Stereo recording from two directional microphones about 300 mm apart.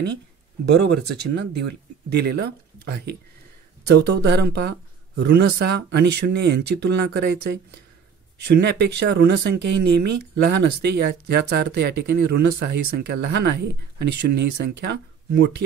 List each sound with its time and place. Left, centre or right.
0.7 s speech: right
8.4 s speech: right